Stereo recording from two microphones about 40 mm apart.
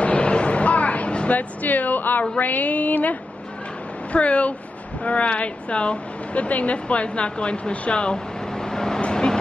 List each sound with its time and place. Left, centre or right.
0.0 s a sound: left
1.3 s speech: left; by 9.0 s centre
9.1 s vehicle: centre